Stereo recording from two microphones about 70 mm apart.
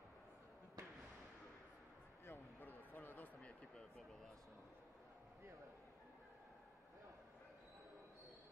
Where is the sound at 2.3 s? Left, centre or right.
Left.